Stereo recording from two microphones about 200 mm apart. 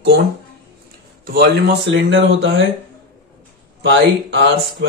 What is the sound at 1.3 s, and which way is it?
Speech, 55° right (ahead or behind).